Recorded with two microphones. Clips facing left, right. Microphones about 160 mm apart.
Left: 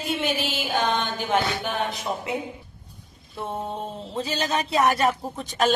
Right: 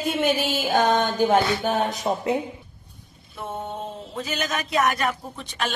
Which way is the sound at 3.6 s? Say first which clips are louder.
Right 1 dB; centre (ahead or behind).